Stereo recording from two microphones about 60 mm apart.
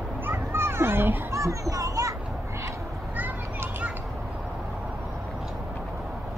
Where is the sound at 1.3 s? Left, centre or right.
Right.